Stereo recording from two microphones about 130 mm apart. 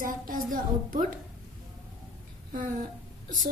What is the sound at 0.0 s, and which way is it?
Speech, 90° right.